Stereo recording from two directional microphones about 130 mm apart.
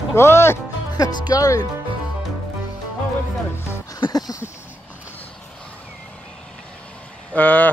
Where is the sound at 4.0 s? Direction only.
30° left (ahead or behind).